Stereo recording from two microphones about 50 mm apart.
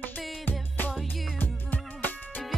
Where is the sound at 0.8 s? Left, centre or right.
Left.